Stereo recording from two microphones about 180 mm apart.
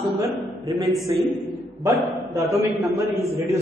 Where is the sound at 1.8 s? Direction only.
15° right (ahead or behind).